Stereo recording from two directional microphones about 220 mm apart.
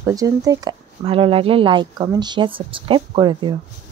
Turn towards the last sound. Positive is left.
turn(degrees=-20)  # may be behind; listen again after turning